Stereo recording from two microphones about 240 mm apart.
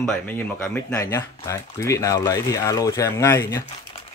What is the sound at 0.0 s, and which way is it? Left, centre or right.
Speech, centre.